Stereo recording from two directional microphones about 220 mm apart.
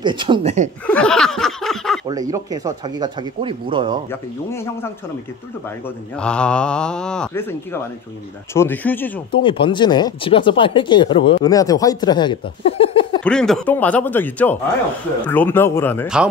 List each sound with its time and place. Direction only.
0.0 s speech: 20° right (ahead or behind)
0.8 s a sound: 5° left (ahead or behind)
2.0 s speech: 15° right (ahead or behind)
4.1 s a man's voice: 10° left (ahead or behind)
5.9 s a man's voice: 5° left (ahead or behind)
9.3 s speech: 25° left (ahead or behind)
13.2 s a man's voice: 5° left (ahead or behind)